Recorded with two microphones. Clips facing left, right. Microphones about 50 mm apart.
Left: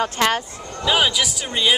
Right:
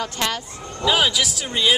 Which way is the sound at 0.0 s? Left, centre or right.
Left.